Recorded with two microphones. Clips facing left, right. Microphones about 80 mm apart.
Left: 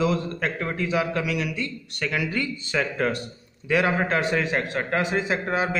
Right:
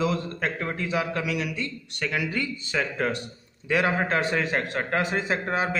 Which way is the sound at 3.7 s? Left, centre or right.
Right.